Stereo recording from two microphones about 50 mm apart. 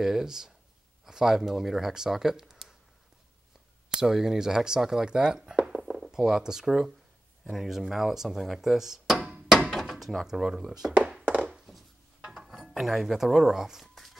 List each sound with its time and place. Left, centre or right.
0.0 s speech: centre
3.9 s speech: centre
9.8 s drawer open or close: centre
10.2 s speech: centre
10.9 s thunk: right
12.2 s dishes: centre